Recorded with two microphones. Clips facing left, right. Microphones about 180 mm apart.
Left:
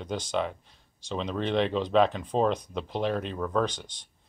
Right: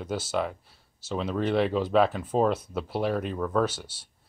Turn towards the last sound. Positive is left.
turn(degrees=-5)  # may be behind; listen again after turning